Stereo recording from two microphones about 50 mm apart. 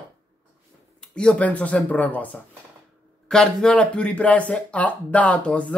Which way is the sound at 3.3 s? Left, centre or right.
Centre.